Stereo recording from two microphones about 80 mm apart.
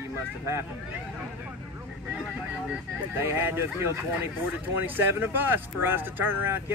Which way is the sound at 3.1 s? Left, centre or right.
Right.